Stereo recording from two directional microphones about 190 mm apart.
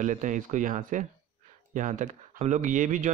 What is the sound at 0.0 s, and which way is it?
A man's voice, 40° right (ahead or behind).